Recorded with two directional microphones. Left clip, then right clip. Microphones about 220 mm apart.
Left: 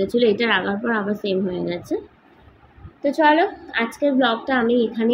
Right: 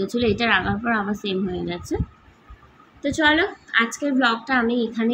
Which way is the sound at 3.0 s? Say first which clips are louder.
Left 3 dB; 15° right (ahead or behind).